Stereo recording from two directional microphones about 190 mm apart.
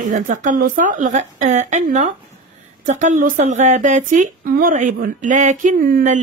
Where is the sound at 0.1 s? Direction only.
40° right (ahead or behind).